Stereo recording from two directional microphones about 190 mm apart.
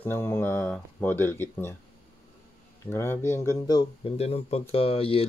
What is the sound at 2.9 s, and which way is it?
Speech, 15° left (ahead or behind).